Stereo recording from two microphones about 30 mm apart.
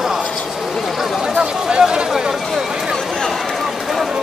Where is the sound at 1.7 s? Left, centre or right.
Right.